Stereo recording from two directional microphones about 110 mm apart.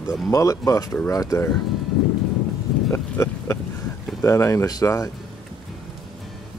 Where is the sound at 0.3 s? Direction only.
30° left (ahead or behind).